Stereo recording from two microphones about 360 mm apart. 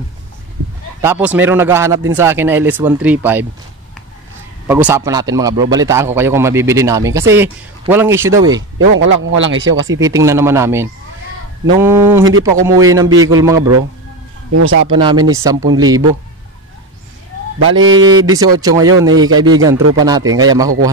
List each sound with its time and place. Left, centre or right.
1.0 s speech: centre
4.6 s a man's voice: centre
8.7 s a man's voice: right
9.9 s a man's voice: centre
11.9 s a man's voice: centre
14.5 s a man's voice: right
14.9 s a man's voice: centre
17.8 s a man's voice: right
18.4 s a man's voice: centre